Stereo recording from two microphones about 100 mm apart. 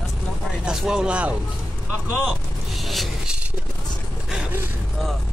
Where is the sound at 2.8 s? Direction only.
Centre (ahead or behind).